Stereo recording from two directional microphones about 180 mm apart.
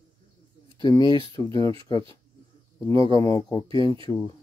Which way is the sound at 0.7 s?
25° left (ahead or behind).